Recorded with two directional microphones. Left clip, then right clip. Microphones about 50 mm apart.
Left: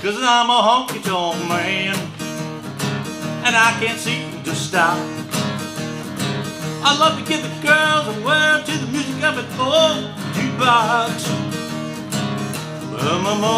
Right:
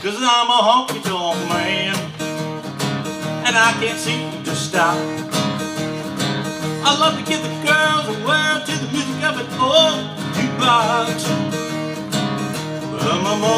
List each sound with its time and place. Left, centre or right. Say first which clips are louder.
0.0 s speech: even; centre
1.7 s music: right 1 dB; centre
3.4 s music: even; centre
4.7 s music: even; right
6.8 s music: left 1 dB; centre
9.6 s music: right 2 dB; centre
13.2 s music: right 1 dB; centre